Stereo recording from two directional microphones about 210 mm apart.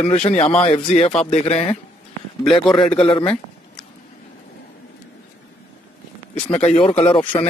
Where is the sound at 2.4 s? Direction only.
Centre (ahead or behind).